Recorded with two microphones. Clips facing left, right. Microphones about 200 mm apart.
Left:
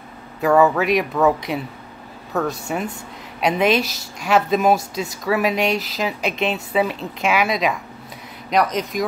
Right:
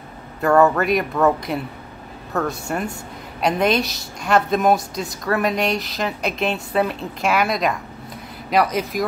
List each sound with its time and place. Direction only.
0.4 s a woman's voice: 5° left (ahead or behind)